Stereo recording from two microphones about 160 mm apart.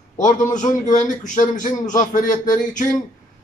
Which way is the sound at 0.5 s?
50° left (ahead or behind).